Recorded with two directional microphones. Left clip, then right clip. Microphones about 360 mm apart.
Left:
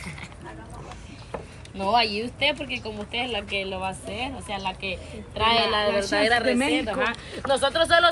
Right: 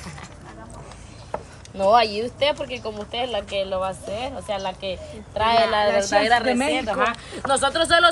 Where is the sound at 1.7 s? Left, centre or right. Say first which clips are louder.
Right 5 dB; centre.